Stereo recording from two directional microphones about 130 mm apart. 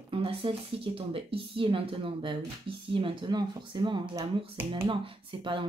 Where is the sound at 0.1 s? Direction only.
45° right (ahead or behind).